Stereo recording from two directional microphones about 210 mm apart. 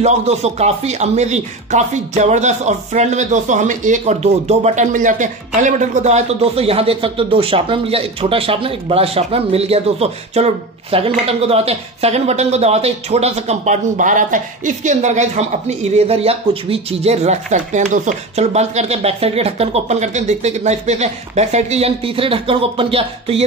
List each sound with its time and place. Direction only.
0.0 s speech: 30° right (ahead or behind)